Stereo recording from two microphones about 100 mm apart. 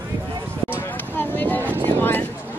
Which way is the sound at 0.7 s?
20° left (ahead or behind).